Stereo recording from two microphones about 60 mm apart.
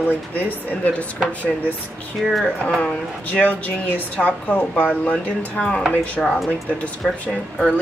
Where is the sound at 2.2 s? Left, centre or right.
Centre.